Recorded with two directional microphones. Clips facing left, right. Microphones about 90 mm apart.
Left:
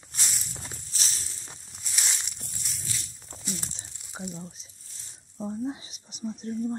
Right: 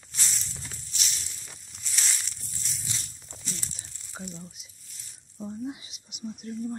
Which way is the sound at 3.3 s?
45° left (ahead or behind).